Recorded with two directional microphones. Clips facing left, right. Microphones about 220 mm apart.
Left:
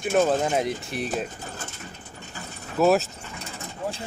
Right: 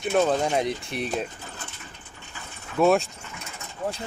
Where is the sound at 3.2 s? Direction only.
35° left (ahead or behind).